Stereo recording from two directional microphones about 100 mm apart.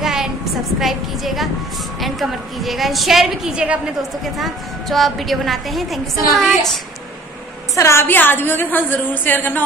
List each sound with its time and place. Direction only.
0.0 s a sound: 5° right (ahead or behind)
0.7 s a woman's voice: centre (ahead or behind)
4.2 s a woman's voice: centre (ahead or behind)
7.7 s a woman's voice: 30° left (ahead or behind)